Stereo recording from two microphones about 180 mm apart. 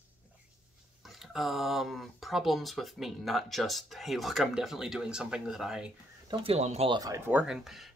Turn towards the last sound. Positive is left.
turn(degrees=0)  # may be behind; listen again after turning